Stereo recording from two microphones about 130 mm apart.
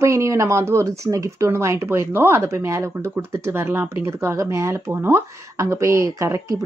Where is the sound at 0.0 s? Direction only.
25° right (ahead or behind).